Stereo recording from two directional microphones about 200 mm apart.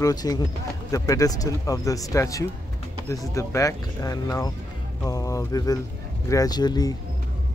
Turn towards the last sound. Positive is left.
turn(degrees=20)  # may be behind; listen again after turning